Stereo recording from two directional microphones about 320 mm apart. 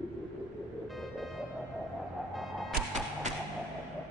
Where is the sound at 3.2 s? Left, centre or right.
Right.